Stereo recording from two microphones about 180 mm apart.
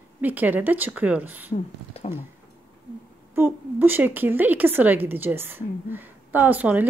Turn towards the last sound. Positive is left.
turn(degrees=-10)  # may be behind; listen again after turning